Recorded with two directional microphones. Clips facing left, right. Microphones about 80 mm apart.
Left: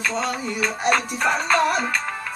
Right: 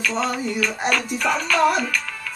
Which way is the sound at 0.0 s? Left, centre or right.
Left.